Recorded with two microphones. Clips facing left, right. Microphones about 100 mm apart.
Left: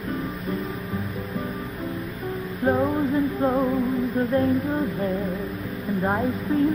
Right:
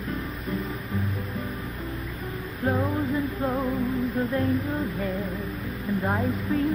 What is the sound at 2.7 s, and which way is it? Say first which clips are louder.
Music: left 4 dB; 30° left (ahead or behind).